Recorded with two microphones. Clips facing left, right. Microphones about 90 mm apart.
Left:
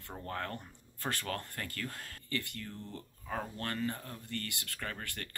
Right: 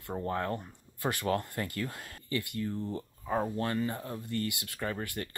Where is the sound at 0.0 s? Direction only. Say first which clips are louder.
Right 7 dB; 15° right (ahead or behind).